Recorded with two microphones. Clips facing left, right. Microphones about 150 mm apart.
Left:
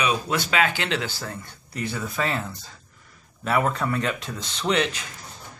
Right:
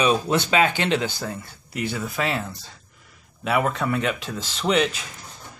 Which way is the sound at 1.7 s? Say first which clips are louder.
Right 2 dB; centre (ahead or behind).